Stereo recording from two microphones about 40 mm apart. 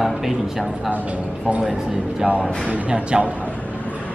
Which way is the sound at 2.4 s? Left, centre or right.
Right.